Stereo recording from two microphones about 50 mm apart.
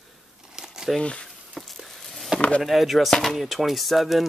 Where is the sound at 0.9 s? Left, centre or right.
Left.